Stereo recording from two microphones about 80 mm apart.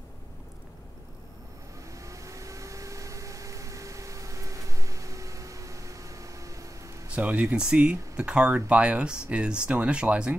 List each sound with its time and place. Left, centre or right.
1.9 s vehicle: right
7.2 s speech: centre